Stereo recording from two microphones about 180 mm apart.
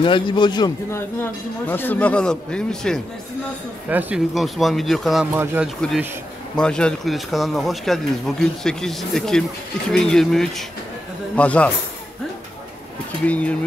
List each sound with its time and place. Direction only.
0.0 s a man's voice: 25° left (ahead or behind)
1.2 s speech: 10° left (ahead or behind)
5.4 s speech: 10° right (ahead or behind)
5.8 s speech: centre (ahead or behind)
13.3 s speech: 5° left (ahead or behind)